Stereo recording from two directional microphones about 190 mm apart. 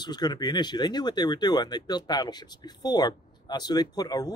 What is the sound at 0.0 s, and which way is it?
Speech, 20° left (ahead or behind).